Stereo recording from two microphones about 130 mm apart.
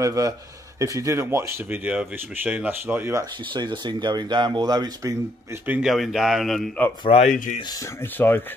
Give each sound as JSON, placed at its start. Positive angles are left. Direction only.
{"t": 0.0, "sound": "speech", "side_deg": -25}
{"t": 3.5, "sound": "speech", "side_deg": -35}
{"t": 5.7, "sound": "speech", "side_deg": -5}
{"t": 7.1, "sound": "speech", "side_deg": 50}
{"t": 8.0, "sound": "speech", "side_deg": 15}